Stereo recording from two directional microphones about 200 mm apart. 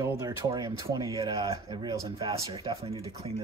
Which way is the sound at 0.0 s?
15° right (ahead or behind).